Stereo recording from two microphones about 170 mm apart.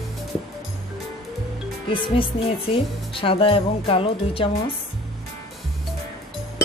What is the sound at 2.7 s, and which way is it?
Speech, 30° left (ahead or behind).